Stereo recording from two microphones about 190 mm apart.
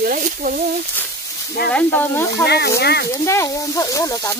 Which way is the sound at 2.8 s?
60° left (ahead or behind).